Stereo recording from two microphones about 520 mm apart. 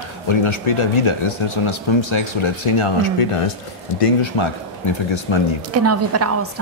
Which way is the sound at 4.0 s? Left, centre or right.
Left.